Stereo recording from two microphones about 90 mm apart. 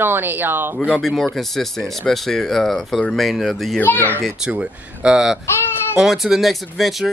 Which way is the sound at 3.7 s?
20° left (ahead or behind).